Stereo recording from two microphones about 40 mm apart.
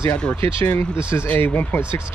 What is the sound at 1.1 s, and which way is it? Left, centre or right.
Speech, left.